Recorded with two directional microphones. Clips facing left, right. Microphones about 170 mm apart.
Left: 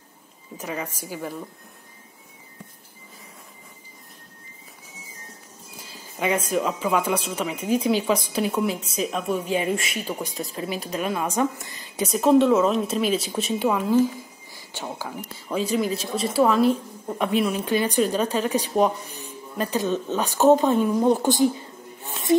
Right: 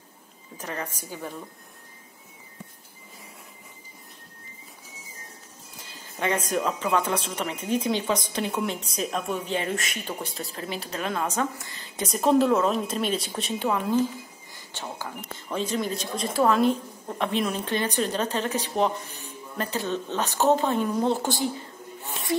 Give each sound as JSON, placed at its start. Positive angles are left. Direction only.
{"t": 0.6, "sound": "speech", "side_deg": 10}
{"t": 5.9, "sound": "a woman's voice", "side_deg": 10}
{"t": 12.0, "sound": "speech", "side_deg": 0}